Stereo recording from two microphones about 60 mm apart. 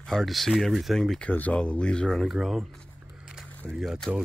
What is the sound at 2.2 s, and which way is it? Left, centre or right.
Speech, centre.